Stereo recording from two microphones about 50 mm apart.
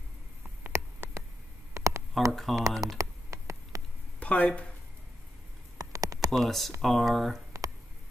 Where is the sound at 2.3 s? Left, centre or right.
Centre.